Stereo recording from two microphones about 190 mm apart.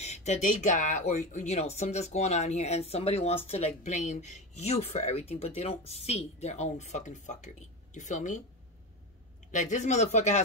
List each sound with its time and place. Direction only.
0.0 s speech: 35° left (ahead or behind)
9.5 s speech: 40° left (ahead or behind)